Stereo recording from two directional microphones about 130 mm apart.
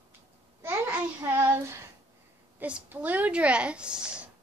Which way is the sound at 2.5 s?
10° right (ahead or behind).